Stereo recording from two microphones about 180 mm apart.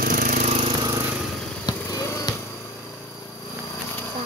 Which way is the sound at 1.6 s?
20° left (ahead or behind).